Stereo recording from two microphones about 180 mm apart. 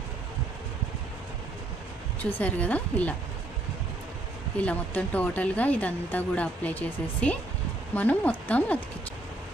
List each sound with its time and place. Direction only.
2.2 s speech: 10° left (ahead or behind)
4.6 s speech: 10° left (ahead or behind)